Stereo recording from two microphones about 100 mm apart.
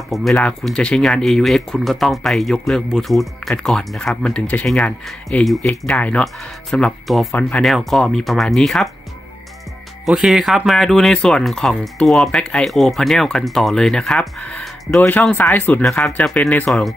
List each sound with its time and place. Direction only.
0.1 s speech: centre (ahead or behind)
7.3 s speech: 10° left (ahead or behind)
10.0 s speech: 5° right (ahead or behind); by 15.8 s 20° left (ahead or behind)
15.8 s speech: centre (ahead or behind)